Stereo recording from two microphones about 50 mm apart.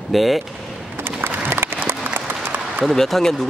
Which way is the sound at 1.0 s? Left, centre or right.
Right.